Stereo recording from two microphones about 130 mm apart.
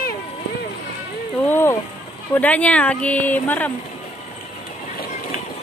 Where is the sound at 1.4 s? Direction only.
15° left (ahead or behind).